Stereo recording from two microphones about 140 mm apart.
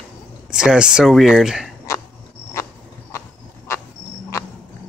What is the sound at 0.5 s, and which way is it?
Speech, 5° right (ahead or behind).